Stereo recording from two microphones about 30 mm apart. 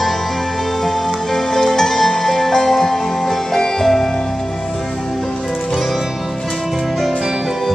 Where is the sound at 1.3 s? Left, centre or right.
Centre.